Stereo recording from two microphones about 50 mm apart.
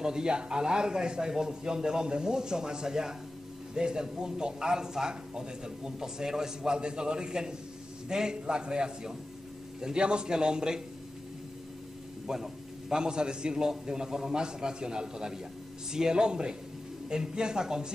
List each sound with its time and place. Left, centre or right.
0.0 s a man's voice: centre
12.3 s a man's voice: centre